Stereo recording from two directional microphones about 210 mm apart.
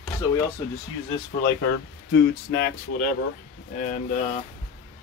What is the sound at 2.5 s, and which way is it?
Speech, 45° left (ahead or behind).